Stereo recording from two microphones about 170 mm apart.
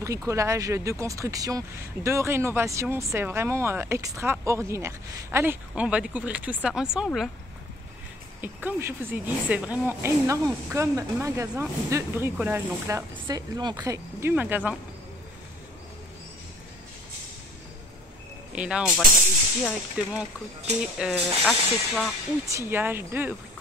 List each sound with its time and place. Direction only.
0.3 s speech: 15° right (ahead or behind)
8.4 s speech: 10° right (ahead or behind)
13.1 s speech: 25° right (ahead or behind); by 14.8 s 10° right (ahead or behind)
18.5 s speech: 5° right (ahead or behind)
22.7 s speech: 10° right (ahead or behind)